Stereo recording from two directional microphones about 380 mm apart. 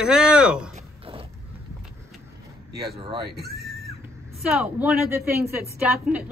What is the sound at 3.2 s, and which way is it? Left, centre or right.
Neigh, right.